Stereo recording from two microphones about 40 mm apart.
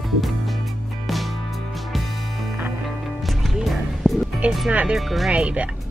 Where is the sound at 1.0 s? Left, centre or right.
Centre.